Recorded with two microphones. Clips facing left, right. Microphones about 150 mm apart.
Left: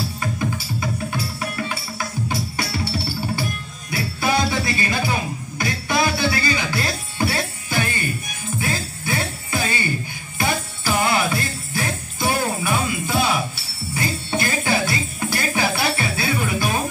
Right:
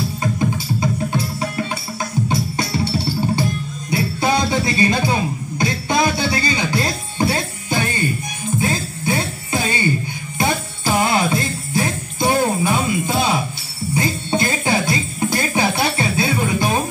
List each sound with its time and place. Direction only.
0.2 s music: 20° right (ahead or behind)
3.9 s music: 20° right (ahead or behind)
8.5 s jingle bell: 20° right (ahead or behind)
10.4 s music: 20° right (ahead or behind)